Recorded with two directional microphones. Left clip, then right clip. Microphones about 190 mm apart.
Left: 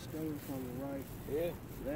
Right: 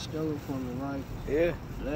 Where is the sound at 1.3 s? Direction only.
35° right (ahead or behind).